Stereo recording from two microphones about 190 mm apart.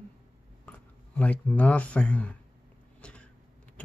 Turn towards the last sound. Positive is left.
turn(degrees=5)  # may be behind; listen again after turning